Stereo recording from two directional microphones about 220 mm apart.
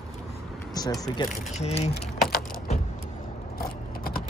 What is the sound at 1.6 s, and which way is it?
Speech, 30° left (ahead or behind).